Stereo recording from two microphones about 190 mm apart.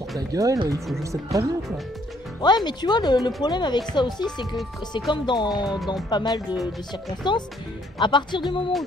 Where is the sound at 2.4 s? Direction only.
20° left (ahead or behind).